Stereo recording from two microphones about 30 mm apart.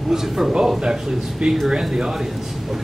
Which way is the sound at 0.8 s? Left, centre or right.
Right.